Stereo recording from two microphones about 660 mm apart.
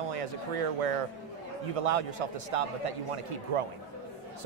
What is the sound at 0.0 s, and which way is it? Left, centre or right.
Music, right.